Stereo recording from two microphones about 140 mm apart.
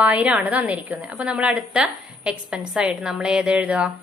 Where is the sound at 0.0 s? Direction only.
10° right (ahead or behind).